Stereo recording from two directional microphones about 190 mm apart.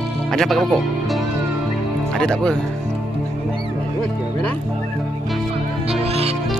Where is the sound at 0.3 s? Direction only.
Centre (ahead or behind).